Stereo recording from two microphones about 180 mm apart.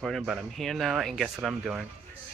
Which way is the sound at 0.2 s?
Centre (ahead or behind).